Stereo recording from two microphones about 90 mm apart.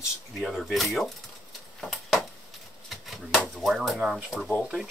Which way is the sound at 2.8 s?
Centre (ahead or behind).